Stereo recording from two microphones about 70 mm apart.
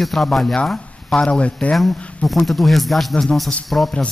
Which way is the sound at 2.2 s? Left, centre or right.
Centre.